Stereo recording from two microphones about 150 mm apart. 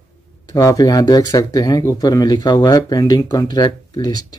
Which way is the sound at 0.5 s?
25° left (ahead or behind).